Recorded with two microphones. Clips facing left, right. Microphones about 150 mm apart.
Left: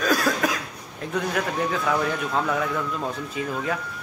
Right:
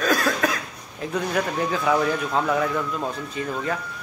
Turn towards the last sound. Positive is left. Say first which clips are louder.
# even
turn(degrees=5)  # may be behind; listen again after turning